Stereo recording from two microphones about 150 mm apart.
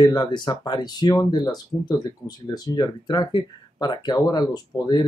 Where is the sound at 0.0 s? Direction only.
25° left (ahead or behind).